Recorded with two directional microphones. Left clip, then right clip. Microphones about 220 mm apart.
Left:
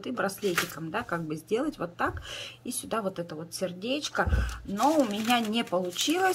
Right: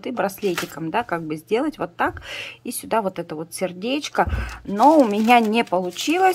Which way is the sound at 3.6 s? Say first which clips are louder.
Right 6 dB; 15° right (ahead or behind).